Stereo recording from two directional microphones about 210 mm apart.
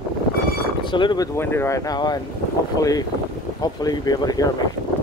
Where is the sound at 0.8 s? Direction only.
20° left (ahead or behind).